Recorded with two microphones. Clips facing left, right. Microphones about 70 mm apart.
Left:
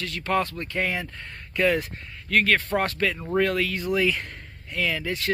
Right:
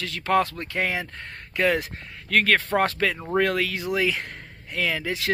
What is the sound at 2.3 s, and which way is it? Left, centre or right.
Speech, right.